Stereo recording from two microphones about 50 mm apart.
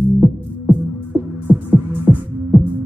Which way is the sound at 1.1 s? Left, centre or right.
Right.